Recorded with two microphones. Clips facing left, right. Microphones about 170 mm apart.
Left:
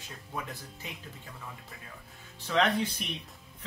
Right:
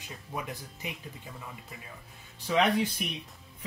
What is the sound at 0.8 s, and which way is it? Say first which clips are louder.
Speech: right 5 dB; 15° right (ahead or behind).